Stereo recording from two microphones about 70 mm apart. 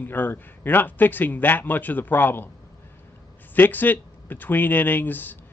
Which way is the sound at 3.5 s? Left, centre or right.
Left.